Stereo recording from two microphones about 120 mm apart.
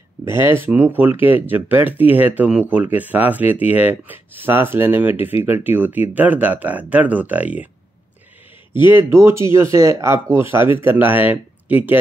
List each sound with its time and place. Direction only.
0.2 s speech: 20° right (ahead or behind)
8.9 s speech: 20° right (ahead or behind)